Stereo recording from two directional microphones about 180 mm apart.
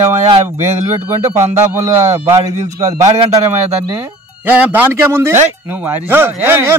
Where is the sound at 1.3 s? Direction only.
15° right (ahead or behind).